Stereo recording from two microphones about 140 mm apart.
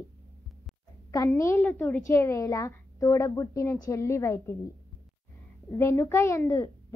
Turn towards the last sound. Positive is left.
turn(degrees=20)  # may be behind; listen again after turning